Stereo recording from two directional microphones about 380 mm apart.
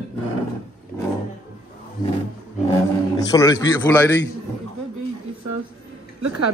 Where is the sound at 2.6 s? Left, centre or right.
Centre.